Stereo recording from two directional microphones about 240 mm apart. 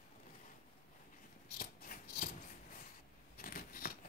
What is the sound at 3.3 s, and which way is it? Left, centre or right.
Scissors, left.